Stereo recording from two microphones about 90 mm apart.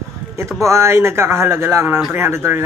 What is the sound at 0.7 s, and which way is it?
Speech, 30° right (ahead or behind).